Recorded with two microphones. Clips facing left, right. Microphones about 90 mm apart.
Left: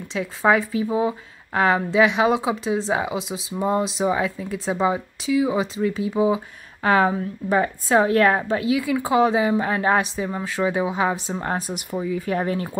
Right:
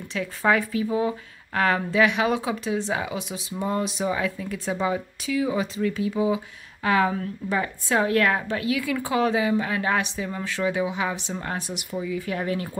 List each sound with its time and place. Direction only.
0.1 s a woman's voice: 25° left (ahead or behind)